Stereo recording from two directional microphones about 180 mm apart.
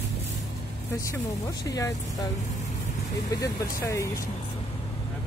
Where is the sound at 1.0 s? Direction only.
20° left (ahead or behind).